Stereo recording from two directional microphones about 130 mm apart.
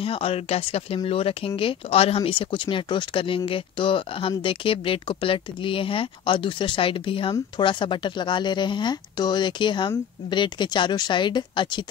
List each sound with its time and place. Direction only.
0.0 s speech: 45° left (ahead or behind)